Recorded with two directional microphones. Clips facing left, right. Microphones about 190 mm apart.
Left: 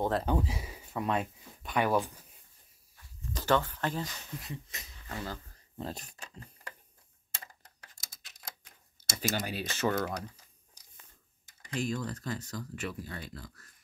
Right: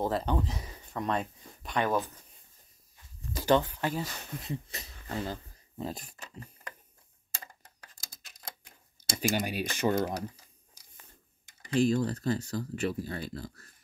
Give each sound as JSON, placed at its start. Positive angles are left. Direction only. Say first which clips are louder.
{"t": 0.0, "sound": "speech", "louder": "even", "side_deg": 0}
{"t": 3.3, "sound": "speech", "louder": "right 3 dB", "side_deg": -15}
{"t": 4.5, "sound": "speech", "louder": "right 6 dB", "side_deg": -30}
{"t": 5.8, "sound": "speech", "louder": "right 2 dB", "side_deg": -10}
{"t": 9.1, "sound": "speech", "louder": "right 4 dB", "side_deg": -15}
{"t": 11.6, "sound": "speech", "louder": "right 8 dB", "side_deg": -30}